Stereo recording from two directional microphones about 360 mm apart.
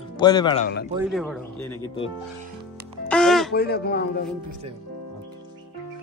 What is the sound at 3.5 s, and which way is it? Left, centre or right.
Speech, left.